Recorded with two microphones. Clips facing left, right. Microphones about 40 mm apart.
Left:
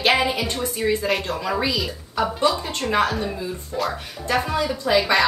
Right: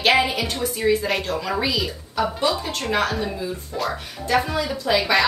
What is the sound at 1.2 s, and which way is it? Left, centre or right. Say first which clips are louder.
Speech: right 1 dB; centre.